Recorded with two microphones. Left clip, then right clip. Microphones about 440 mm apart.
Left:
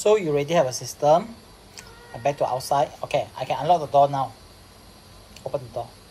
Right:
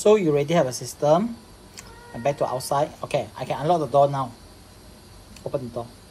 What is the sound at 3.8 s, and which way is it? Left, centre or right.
Speech, left.